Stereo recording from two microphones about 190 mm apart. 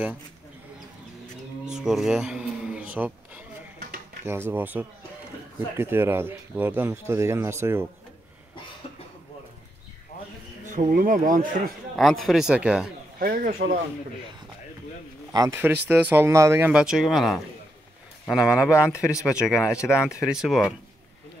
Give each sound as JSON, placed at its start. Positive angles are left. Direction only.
{"t": 1.8, "sound": "a sound", "side_deg": -5}
{"t": 4.3, "sound": "speech", "side_deg": -10}
{"t": 10.7, "sound": "speech", "side_deg": -45}
{"t": 12.0, "sound": "a man's voice", "side_deg": 0}
{"t": 13.2, "sound": "speech", "side_deg": -50}
{"t": 15.3, "sound": "a man's voice", "side_deg": -15}